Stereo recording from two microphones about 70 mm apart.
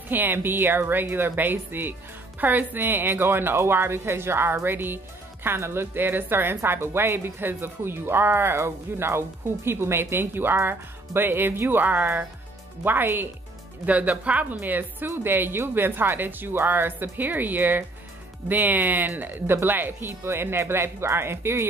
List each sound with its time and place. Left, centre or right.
0.1 s speech: right
13.8 s a woman's voice: right